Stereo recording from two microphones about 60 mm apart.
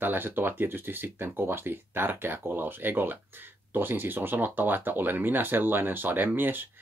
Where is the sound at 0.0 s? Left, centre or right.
Right.